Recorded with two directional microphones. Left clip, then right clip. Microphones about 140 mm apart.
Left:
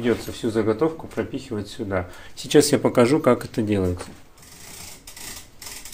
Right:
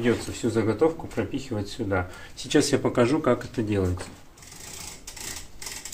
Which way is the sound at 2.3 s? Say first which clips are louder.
Left 5 dB; 55° left (ahead or behind).